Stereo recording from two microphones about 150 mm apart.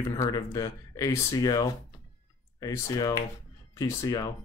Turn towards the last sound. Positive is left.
turn(degrees=25)  # may be behind; listen again after turning